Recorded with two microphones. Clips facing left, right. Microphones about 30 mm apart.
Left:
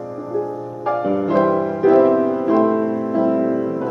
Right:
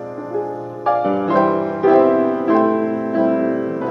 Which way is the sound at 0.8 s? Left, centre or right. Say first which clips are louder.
Right 2 dB; right.